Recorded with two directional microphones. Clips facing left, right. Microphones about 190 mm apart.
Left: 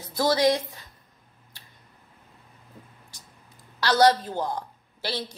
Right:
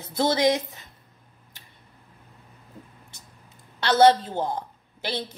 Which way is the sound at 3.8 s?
25° right (ahead or behind).